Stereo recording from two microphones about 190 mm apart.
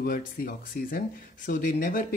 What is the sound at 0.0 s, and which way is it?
Speech, 50° left (ahead or behind).